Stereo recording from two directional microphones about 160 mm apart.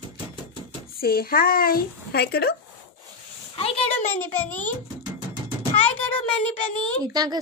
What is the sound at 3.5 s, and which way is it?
Speech, 35° left (ahead or behind).